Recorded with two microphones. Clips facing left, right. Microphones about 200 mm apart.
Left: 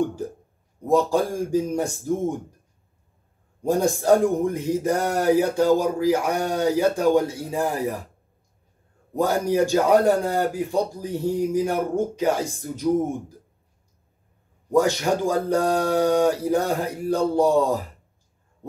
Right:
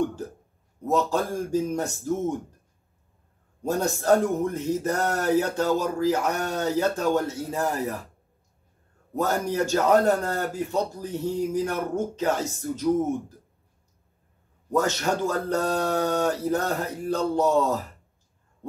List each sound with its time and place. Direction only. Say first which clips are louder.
0.8 s speech: left 4 dB; 10° left (ahead or behind)
3.6 s speech: left 4 dB; 15° left (ahead or behind)
9.1 s speech: left 4 dB; 15° left (ahead or behind)
14.7 s speech: left 4 dB; 10° left (ahead or behind)